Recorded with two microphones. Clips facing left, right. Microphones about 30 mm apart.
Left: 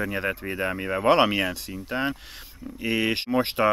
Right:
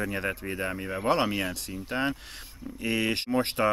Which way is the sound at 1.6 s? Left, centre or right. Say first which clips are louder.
Left 2 dB; centre.